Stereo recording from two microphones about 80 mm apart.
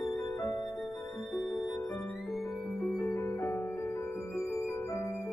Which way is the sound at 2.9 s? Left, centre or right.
Left.